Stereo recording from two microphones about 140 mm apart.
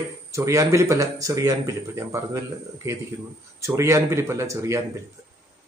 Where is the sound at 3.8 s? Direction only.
20° right (ahead or behind).